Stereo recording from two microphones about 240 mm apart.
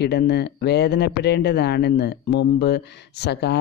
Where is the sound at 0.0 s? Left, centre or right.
Left.